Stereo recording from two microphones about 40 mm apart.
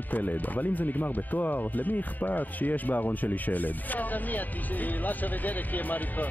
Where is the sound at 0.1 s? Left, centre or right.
Left.